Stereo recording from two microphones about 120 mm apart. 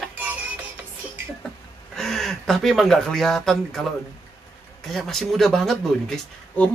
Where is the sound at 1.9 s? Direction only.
5° left (ahead or behind).